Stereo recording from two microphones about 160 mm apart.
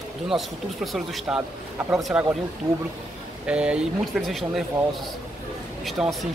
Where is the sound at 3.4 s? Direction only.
5° right (ahead or behind).